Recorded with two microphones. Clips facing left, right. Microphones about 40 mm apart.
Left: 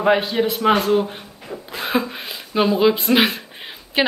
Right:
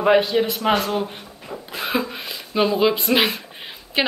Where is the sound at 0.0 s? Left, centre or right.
Centre.